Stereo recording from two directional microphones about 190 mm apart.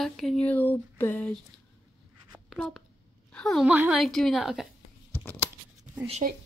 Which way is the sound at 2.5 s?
Centre (ahead or behind).